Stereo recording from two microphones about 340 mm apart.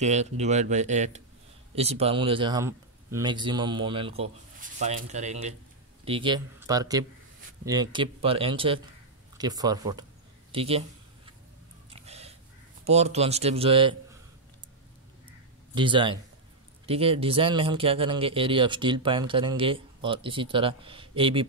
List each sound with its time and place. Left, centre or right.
0.0 s speech: centre
11.9 s a sound: centre
12.8 s speech: centre
15.7 s speech: centre